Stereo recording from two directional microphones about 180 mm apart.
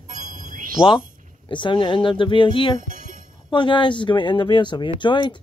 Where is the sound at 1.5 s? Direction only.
25° left (ahead or behind).